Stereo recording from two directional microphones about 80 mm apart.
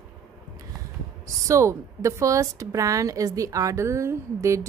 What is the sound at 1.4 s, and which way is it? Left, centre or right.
A woman's voice, right.